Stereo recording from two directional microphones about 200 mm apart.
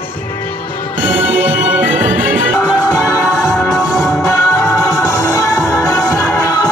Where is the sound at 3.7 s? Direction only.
15° left (ahead or behind).